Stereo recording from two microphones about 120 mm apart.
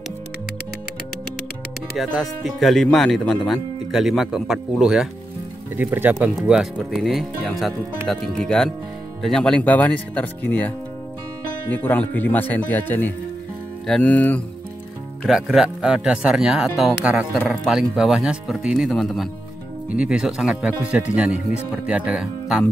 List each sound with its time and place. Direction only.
2.0 s speech: centre (ahead or behind)
5.9 s speech: 15° right (ahead or behind); by 10.7 s 15° left (ahead or behind)
11.7 s speech: 15° left (ahead or behind)
15.2 s speech: centre (ahead or behind)